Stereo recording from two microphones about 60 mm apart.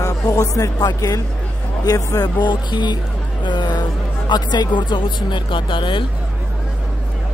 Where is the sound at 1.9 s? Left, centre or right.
Left.